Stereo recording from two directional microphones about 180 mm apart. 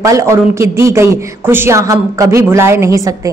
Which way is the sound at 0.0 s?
15° right (ahead or behind).